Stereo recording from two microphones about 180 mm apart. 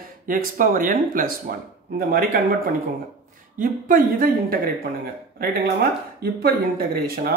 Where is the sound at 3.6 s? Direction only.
50° right (ahead or behind).